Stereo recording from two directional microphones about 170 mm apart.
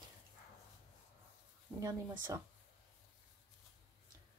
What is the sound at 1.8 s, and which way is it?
Speech, 20° right (ahead or behind).